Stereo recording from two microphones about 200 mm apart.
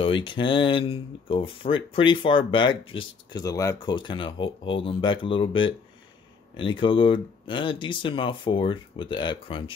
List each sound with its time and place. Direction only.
0.0 s speech: 25° left (ahead or behind)